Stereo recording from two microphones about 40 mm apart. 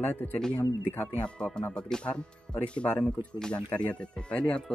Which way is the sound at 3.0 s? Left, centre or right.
Centre.